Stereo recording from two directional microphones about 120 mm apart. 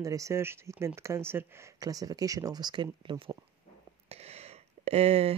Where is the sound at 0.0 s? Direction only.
25° right (ahead or behind).